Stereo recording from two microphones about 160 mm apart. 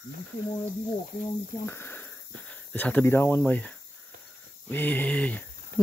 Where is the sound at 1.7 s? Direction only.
15° left (ahead or behind).